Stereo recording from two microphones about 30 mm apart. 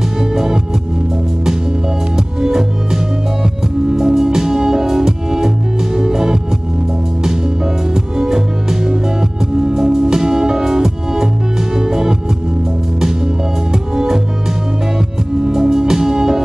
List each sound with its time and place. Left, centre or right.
0.3 s music: centre
2.1 s music: centre
13.9 s music: right
15.4 s music: centre